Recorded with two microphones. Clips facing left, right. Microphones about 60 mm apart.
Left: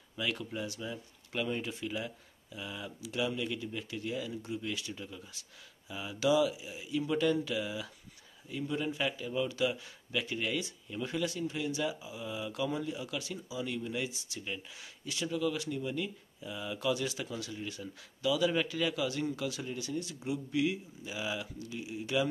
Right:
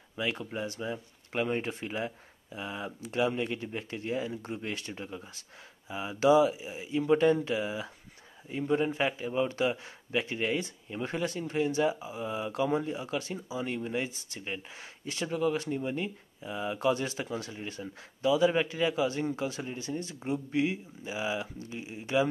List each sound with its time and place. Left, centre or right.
0.1 s a man's voice: right